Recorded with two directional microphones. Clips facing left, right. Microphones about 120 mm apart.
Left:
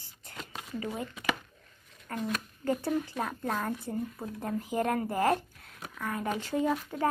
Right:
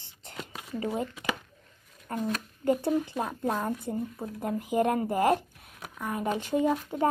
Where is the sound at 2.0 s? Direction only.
20° right (ahead or behind).